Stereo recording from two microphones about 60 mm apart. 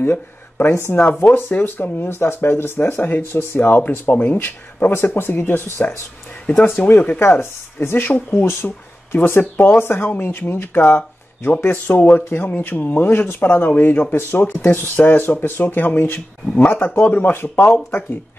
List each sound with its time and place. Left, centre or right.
0.0 s speech: left
6.4 s speech: left
7.2 s speech: left
11.0 s a sound: left
11.6 s speech: left